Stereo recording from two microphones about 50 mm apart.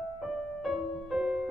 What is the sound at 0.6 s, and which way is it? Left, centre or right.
Music, centre.